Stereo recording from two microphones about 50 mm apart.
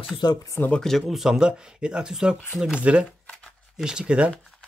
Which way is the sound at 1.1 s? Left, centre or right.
Centre.